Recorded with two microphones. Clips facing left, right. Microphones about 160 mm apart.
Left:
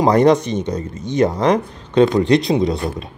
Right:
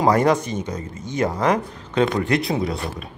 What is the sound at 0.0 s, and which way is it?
A man's voice, 25° left (ahead or behind).